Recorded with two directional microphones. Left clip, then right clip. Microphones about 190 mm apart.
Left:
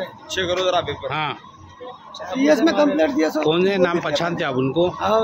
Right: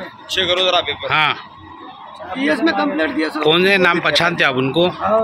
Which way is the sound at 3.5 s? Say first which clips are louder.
Right 8 dB; centre (ahead or behind).